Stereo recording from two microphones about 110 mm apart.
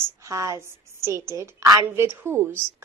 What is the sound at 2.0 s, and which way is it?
Speech, 20° right (ahead or behind).